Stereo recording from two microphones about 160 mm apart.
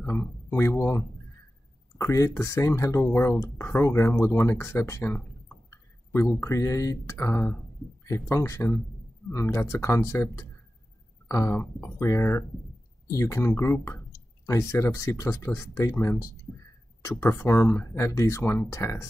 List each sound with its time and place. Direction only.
0.0 s speech: 15° left (ahead or behind)
6.4 s speech: 20° left (ahead or behind)